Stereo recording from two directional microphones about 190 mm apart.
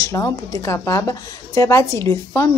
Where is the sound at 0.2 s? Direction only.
15° left (ahead or behind).